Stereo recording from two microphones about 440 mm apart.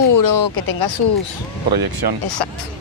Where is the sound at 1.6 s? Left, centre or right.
Right.